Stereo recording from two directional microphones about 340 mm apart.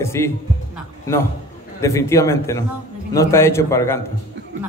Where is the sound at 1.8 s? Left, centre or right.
Centre.